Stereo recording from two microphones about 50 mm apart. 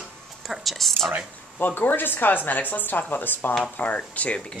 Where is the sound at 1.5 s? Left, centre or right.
Left.